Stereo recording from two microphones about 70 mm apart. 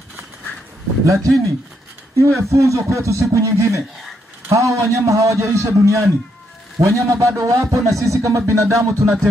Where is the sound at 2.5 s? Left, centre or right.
Right.